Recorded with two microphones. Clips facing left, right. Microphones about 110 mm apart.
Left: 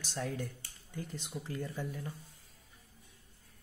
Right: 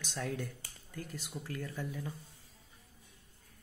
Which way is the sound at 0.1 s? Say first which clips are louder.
Even; 10° left (ahead or behind).